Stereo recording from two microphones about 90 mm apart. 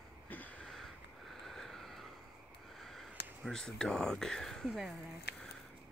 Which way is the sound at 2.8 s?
5° left (ahead or behind).